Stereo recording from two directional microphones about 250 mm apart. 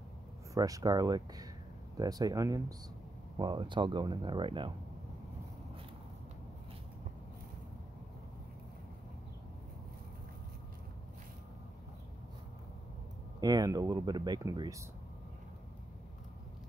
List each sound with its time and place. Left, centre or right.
0.6 s speech: centre
13.4 s speech: centre